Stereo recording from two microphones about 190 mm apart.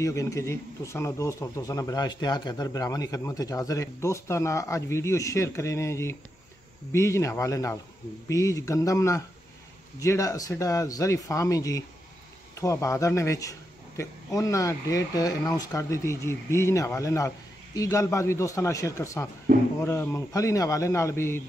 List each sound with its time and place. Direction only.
0.0 s speech: 15° left (ahead or behind)
19.5 s speech: 45° right (ahead or behind)
19.8 s speech: 15° left (ahead or behind)